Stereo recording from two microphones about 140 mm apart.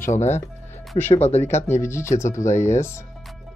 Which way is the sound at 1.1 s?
50° left (ahead or behind).